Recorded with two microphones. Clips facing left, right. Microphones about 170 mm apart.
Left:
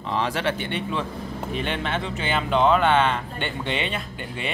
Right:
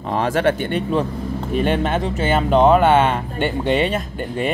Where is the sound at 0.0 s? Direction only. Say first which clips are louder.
Right 7 dB; 50° right (ahead or behind).